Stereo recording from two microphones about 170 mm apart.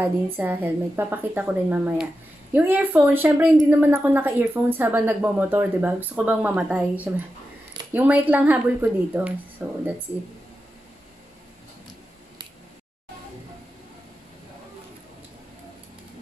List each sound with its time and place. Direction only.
0.0 s a woman's voice: 10° right (ahead or behind)